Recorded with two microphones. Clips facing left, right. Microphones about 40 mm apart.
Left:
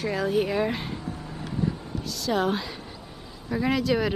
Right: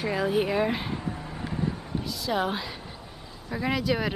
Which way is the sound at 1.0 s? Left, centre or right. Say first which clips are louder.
Right 1 dB; right.